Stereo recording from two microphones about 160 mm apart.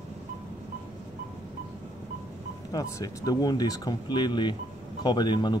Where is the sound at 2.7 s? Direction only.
20° left (ahead or behind).